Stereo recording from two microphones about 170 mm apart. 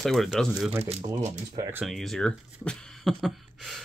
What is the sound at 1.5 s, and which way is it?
Speech, 20° right (ahead or behind).